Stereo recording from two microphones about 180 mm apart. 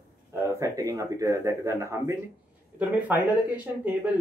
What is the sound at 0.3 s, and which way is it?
Speech, 20° right (ahead or behind).